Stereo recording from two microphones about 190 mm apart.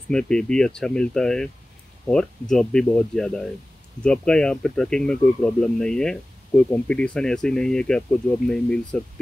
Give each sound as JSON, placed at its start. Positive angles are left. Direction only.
{"t": 0.1, "sound": "speech", "side_deg": 5}